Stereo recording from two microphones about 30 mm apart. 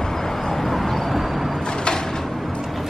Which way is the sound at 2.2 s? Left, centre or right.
Centre.